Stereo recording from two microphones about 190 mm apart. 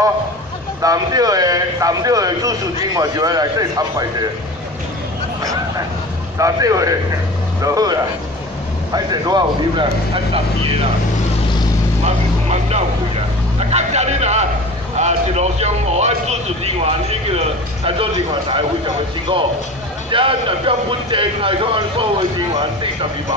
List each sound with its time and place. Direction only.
0.8 s speech: 20° right (ahead or behind)
6.3 s a man's voice: 15° right (ahead or behind)
12.0 s vehicle: 35° right (ahead or behind)
13.6 s music: 35° right (ahead or behind)
15.0 s speech: 35° right (ahead or behind)
20.1 s speech: 25° right (ahead or behind)